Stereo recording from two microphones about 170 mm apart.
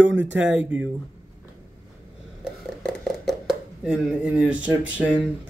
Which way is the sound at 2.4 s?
Centre (ahead or behind).